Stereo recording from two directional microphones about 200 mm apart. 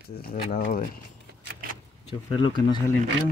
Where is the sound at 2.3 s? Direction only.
25° left (ahead or behind).